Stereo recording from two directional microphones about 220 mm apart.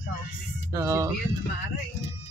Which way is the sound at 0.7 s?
10° right (ahead or behind).